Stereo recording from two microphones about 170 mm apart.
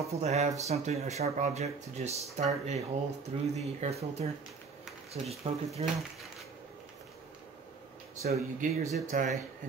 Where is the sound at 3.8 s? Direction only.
40° right (ahead or behind).